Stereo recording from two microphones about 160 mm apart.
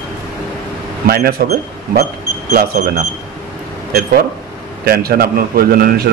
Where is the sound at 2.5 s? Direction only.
70° right (ahead or behind).